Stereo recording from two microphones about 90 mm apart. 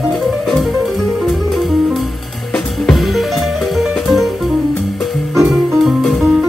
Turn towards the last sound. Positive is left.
turn(degrees=-5)  # may be behind; listen again after turning